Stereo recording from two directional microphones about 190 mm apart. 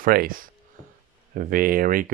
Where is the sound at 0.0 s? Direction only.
50° right (ahead or behind).